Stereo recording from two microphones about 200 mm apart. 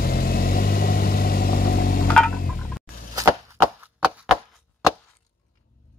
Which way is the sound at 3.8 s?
5° right (ahead or behind).